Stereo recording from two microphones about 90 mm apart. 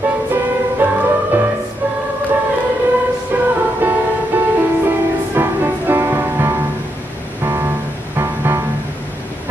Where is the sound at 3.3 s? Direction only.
25° right (ahead or behind).